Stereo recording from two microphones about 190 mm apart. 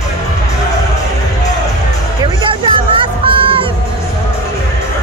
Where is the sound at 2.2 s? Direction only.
25° right (ahead or behind).